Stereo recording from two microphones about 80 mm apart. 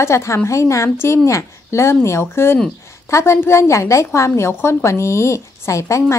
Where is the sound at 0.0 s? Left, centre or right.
Left.